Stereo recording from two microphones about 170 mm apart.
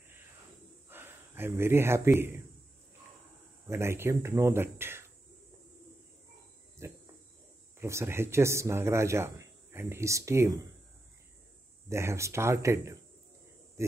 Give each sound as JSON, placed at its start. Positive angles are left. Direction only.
{"t": 0.8, "sound": "a man's voice", "side_deg": -10}
{"t": 3.6, "sound": "a man's voice", "side_deg": -15}
{"t": 6.8, "sound": "cricket", "side_deg": -15}
{"t": 7.8, "sound": "a man's voice", "side_deg": -15}
{"t": 11.9, "sound": "a man's voice", "side_deg": -15}